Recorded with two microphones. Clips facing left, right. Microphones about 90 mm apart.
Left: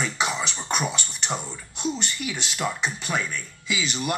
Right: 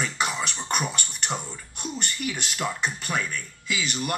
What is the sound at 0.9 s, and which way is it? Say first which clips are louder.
Speech: left 1 dB; 50° right (ahead or behind).